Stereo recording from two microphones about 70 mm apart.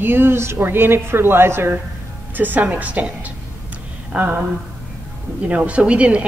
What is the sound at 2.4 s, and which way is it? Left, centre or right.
Speech, right.